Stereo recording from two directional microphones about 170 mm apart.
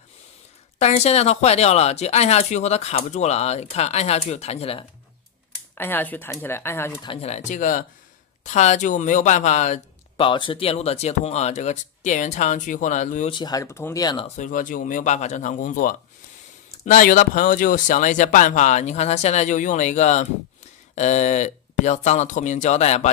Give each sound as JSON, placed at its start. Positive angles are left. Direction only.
{"t": 0.7, "sound": "speech", "side_deg": 40}
{"t": 5.8, "sound": "speech", "side_deg": 10}
{"t": 7.0, "sound": "speech", "side_deg": 35}
{"t": 10.2, "sound": "speech", "side_deg": 30}
{"t": 13.3, "sound": "speech", "side_deg": 25}
{"t": 14.2, "sound": "speech", "side_deg": 45}